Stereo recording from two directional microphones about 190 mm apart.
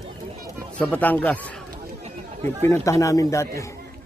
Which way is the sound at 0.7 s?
10° left (ahead or behind).